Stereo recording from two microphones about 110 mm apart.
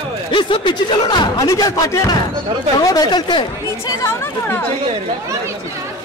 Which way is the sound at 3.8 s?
25° left (ahead or behind).